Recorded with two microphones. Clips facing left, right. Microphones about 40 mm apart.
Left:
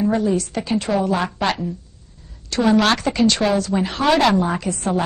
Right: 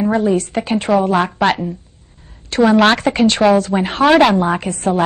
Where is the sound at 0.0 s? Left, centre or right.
Right.